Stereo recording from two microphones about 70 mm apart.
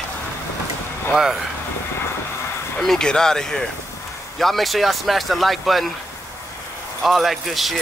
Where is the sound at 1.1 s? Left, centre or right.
Centre.